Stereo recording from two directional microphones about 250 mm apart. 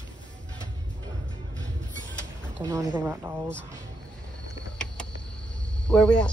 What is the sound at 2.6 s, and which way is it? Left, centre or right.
Boat, centre.